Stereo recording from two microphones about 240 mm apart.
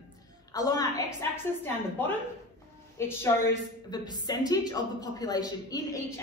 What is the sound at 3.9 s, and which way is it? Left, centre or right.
A woman's voice, centre.